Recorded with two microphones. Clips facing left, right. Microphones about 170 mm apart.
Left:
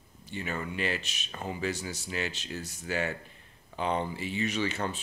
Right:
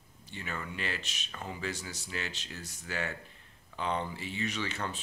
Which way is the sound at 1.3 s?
25° left (ahead or behind).